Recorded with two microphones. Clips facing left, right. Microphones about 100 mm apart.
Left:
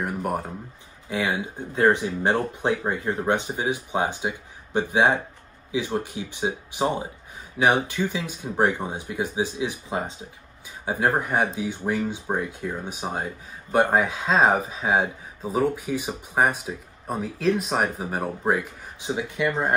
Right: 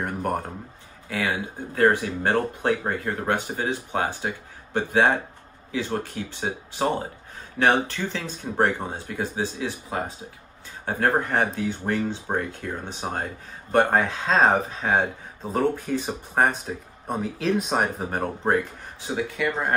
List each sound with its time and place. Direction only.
0.0 s speech: 5° left (ahead or behind)
1.0 s speech: 20° left (ahead or behind)
10.9 s speech: 10° left (ahead or behind)
18.9 s speech: 20° left (ahead or behind)